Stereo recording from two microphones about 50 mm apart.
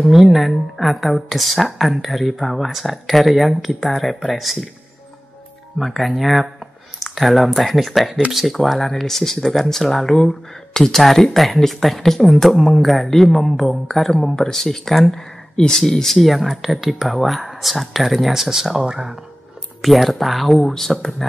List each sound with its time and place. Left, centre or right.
0.1 s speech: centre
5.8 s speech: centre